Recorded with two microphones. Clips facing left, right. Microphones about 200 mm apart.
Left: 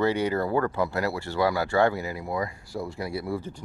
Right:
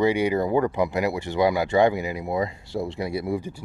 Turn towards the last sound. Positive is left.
turn(degrees=-15)  # may be behind; listen again after turning